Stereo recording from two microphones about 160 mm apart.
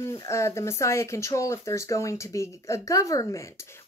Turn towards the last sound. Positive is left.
turn(degrees=20)  # may be behind; listen again after turning